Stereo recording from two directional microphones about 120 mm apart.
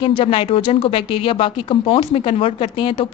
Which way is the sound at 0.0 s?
50° left (ahead or behind).